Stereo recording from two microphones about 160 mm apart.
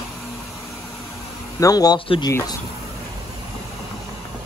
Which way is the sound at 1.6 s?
25° left (ahead or behind).